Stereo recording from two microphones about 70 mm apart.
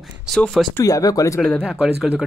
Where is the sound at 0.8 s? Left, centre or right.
Left.